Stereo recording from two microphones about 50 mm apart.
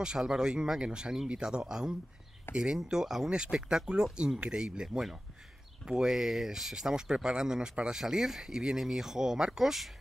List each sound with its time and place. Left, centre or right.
0.0 s speech: centre